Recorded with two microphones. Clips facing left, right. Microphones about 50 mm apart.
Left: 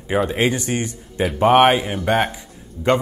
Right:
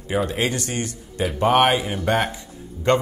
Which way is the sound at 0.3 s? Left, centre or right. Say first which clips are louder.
Left 4 dB; centre.